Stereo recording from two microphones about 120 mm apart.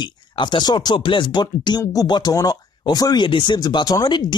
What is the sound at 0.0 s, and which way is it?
Speech, 40° left (ahead or behind).